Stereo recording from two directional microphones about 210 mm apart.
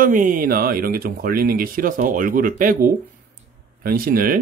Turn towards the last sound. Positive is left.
turn(degrees=-45)  # may be behind; listen again after turning